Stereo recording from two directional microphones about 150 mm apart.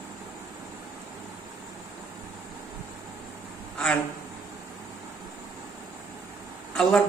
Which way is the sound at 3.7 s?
5° left (ahead or behind).